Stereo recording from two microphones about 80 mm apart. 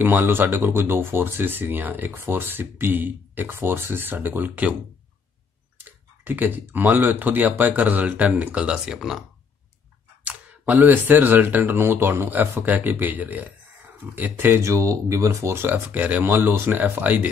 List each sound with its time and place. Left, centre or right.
0.0 s speech: right
5.8 s speech: right; by 9.2 s centre
10.2 s speech: centre